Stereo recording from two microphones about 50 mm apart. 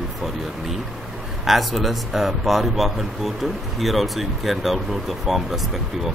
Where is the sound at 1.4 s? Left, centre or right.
Centre.